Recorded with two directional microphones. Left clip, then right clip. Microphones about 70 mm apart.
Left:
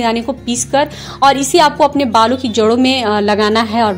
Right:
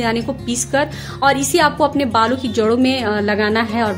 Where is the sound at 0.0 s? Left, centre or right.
Left.